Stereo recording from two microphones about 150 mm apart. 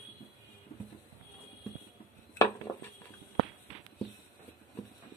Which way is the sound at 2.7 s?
30° left (ahead or behind).